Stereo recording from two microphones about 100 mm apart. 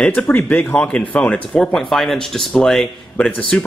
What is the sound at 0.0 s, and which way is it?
Speech, 15° left (ahead or behind).